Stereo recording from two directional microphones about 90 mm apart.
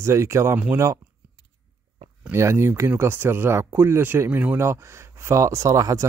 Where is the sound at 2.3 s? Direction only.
30° right (ahead or behind).